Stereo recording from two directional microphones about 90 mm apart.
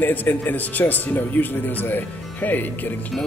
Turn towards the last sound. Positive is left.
turn(degrees=20)  # may be behind; listen again after turning